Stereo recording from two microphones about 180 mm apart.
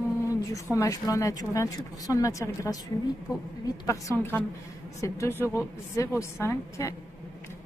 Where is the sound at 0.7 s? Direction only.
20° left (ahead or behind).